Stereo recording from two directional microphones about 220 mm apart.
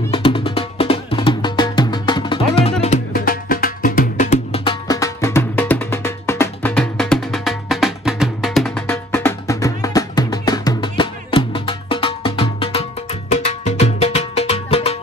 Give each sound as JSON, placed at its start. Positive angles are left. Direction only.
{"t": 0.1, "sound": "music", "side_deg": 25}
{"t": 2.8, "sound": "music", "side_deg": 35}